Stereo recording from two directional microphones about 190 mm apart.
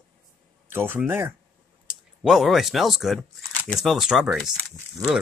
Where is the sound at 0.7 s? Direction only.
10° right (ahead or behind).